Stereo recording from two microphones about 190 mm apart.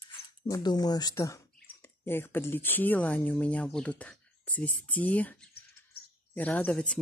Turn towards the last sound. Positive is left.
turn(degrees=5)  # may be behind; listen again after turning